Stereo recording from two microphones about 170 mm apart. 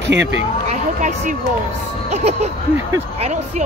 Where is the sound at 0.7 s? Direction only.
45° right (ahead or behind).